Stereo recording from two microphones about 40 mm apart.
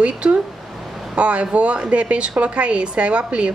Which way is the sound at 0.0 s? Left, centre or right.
Right.